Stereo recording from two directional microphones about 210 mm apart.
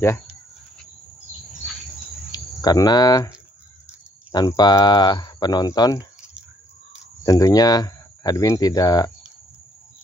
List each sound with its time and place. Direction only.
2.3 s speech: 20° left (ahead or behind)
4.3 s speech: 20° left (ahead or behind)
7.2 s speech: 15° left (ahead or behind)